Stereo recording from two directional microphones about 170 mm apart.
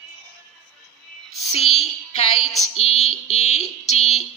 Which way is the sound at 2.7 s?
35° left (ahead or behind).